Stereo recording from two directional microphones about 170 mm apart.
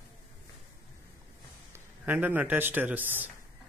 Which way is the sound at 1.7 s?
10° right (ahead or behind).